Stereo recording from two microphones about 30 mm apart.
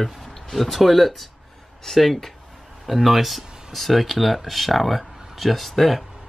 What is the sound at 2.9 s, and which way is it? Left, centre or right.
Speech, centre.